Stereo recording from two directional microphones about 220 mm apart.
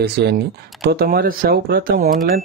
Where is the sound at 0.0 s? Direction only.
50° right (ahead or behind).